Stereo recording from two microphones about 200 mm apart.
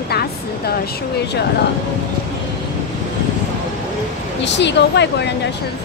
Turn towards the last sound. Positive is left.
turn(degrees=60)  # may be behind; listen again after turning